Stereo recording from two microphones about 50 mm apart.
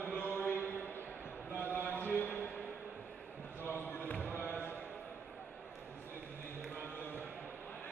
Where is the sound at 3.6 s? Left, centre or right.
Left.